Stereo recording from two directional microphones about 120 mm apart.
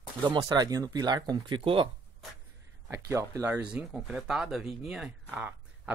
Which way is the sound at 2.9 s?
25° right (ahead or behind).